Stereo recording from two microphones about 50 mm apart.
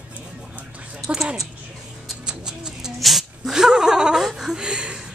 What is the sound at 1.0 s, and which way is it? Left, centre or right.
Speech, centre.